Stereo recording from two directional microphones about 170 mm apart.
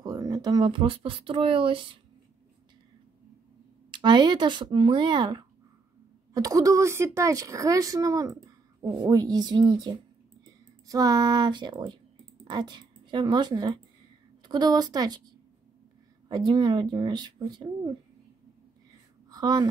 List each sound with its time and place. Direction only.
0.0 s speech: 20° right (ahead or behind)
3.9 s a woman's voice: 25° right (ahead or behind)
16.3 s a woman's voice: 25° right (ahead or behind)
19.3 s speech: 25° right (ahead or behind)